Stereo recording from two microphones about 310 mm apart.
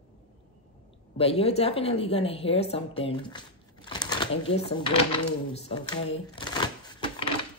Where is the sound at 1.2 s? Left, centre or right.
Centre.